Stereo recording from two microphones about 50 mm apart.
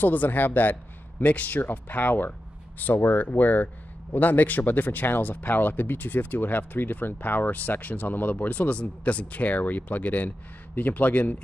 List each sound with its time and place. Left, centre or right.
0.0 s a man's voice: left